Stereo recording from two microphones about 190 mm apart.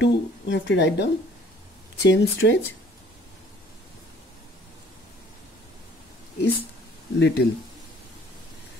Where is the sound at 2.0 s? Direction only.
70° left (ahead or behind).